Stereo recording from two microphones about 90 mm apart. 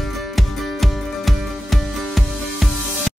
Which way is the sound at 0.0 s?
Centre (ahead or behind).